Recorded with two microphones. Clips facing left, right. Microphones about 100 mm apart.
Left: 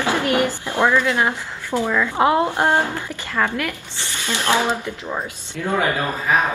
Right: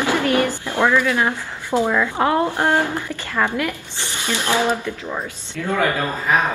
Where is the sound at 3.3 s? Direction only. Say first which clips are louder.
Right 1 dB; 15° right (ahead or behind).